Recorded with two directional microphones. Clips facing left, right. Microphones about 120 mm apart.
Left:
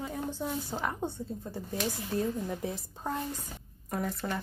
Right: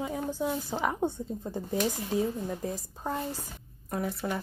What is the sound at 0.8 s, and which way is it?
Speech, 10° right (ahead or behind).